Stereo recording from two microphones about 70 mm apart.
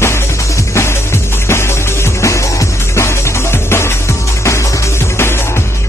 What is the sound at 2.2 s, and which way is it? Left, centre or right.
Music, left.